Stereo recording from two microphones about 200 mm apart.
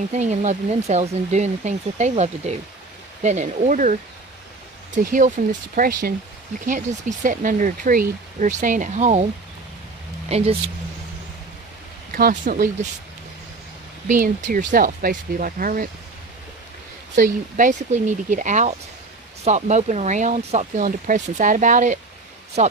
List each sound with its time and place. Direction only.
0.1 s speech: 35° right (ahead or behind)
5.4 s speech: 40° right (ahead or behind)
12.2 s speech: 45° right (ahead or behind)
14.0 s speech: 40° right (ahead or behind)
17.1 s speech: 40° right (ahead or behind)